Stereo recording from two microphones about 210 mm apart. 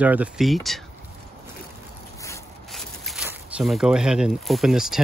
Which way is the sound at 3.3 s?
5° right (ahead or behind).